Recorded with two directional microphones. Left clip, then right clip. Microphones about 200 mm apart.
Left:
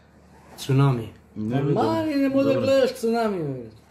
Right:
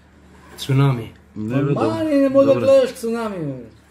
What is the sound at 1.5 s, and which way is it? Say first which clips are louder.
A man's voice: right 2 dB; 55° left (ahead or behind).